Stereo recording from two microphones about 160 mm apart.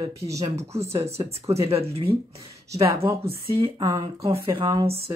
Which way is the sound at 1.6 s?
35° right (ahead or behind).